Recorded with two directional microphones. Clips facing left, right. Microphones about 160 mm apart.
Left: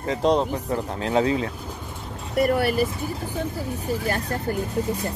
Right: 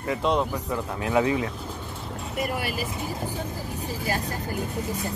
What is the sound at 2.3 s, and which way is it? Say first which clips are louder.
Speech: left 9 dB; 60° left (ahead or behind).